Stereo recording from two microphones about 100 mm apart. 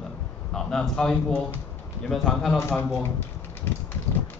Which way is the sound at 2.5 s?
25° left (ahead or behind).